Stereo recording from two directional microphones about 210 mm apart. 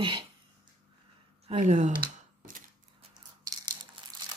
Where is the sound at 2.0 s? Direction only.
40° right (ahead or behind).